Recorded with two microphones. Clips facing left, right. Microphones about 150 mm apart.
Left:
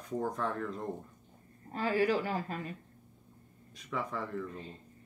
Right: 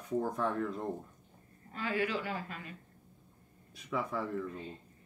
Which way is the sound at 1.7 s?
35° left (ahead or behind).